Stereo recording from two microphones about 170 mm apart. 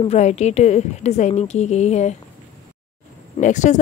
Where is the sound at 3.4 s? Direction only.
45° left (ahead or behind).